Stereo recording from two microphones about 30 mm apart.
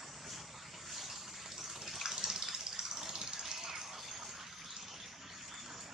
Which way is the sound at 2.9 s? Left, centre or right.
Centre.